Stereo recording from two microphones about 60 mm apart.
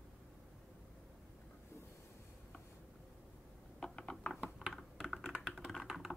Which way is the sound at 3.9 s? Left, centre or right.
Centre.